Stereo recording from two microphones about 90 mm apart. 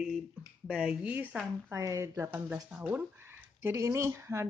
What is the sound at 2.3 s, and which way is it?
Speech, 15° right (ahead or behind).